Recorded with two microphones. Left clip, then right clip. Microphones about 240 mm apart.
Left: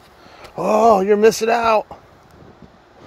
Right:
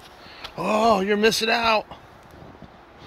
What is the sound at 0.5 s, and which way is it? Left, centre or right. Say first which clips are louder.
Speech: left 6 dB; left.